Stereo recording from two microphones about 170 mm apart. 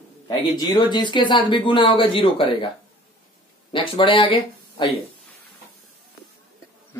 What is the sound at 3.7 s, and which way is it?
Speech, 30° left (ahead or behind).